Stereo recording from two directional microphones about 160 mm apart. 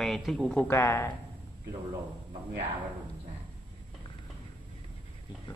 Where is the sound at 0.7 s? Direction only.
15° left (ahead or behind).